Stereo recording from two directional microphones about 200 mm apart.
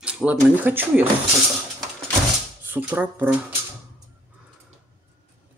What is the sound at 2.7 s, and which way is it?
Speech, 10° right (ahead or behind).